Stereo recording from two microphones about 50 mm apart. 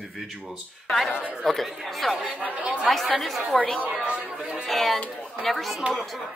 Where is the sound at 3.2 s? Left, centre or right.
Centre.